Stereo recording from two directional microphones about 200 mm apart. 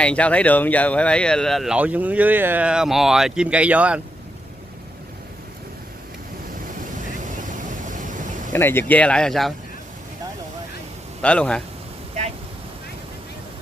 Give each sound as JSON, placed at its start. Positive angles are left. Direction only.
{"t": 0.0, "sound": "speech", "side_deg": 5}
{"t": 7.1, "sound": "vehicle", "side_deg": -40}
{"t": 8.5, "sound": "speech", "side_deg": 10}
{"t": 11.1, "sound": "a man's voice", "side_deg": 5}